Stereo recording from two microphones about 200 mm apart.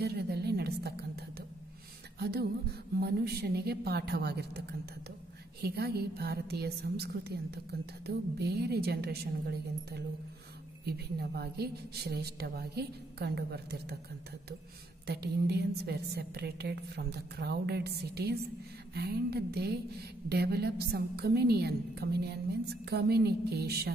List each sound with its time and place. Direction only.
0.0 s a sound: 55° right (ahead or behind)
3.0 s a woman's voice: 50° right (ahead or behind)
15.0 s a woman's voice: 55° right (ahead or behind)